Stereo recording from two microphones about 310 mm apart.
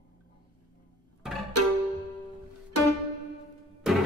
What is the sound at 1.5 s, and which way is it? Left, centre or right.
Music, right.